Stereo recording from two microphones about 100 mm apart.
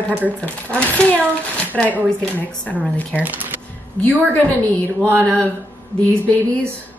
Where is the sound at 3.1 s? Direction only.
15° right (ahead or behind).